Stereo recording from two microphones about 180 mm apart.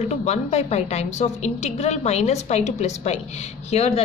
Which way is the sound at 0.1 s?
35° left (ahead or behind).